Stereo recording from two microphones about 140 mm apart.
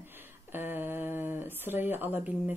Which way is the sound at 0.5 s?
15° right (ahead or behind).